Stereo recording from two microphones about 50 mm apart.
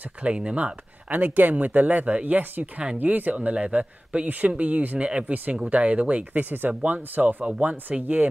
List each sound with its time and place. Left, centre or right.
0.2 s speech: right
1.1 s speech: right
5.3 s speech: right